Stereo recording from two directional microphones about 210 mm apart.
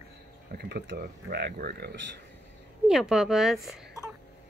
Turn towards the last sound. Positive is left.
turn(degrees=0)  # may be behind; listen again after turning